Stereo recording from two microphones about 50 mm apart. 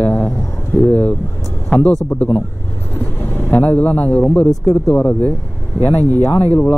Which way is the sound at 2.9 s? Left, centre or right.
Left.